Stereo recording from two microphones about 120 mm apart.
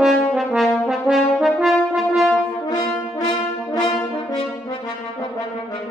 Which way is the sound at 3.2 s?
35° left (ahead or behind).